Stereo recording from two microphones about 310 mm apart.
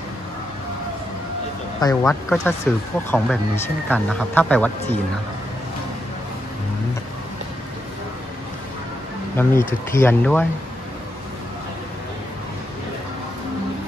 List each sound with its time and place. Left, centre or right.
1.8 s speech: centre
9.4 s speech: centre